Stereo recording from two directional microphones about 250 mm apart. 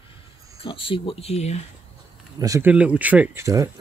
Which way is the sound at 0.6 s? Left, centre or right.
Left.